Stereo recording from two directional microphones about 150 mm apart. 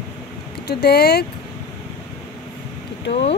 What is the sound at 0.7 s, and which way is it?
Speech, 90° left.